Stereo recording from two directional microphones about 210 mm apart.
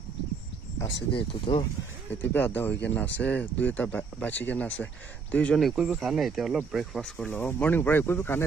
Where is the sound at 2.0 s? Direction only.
10° left (ahead or behind).